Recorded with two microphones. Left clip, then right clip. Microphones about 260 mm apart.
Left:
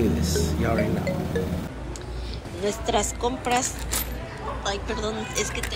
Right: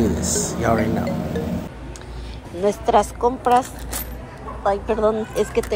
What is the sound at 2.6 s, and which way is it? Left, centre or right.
Speech, centre.